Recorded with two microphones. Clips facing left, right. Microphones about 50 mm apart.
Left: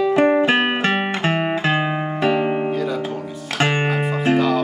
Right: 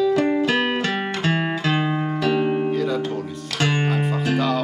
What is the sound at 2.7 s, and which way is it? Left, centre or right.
Music, centre.